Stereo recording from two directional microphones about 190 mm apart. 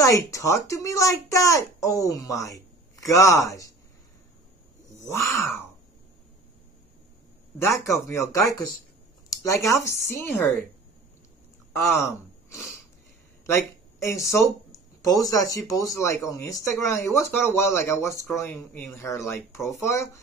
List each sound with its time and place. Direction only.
0.0 s speech: 15° left (ahead or behind)
5.1 s speech: 15° left (ahead or behind)
7.5 s speech: 15° left (ahead or behind)
11.7 s speech: 15° left (ahead or behind)
14.3 s speech: 15° left (ahead or behind)